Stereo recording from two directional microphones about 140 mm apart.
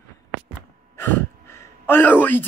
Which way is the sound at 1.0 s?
15° left (ahead or behind).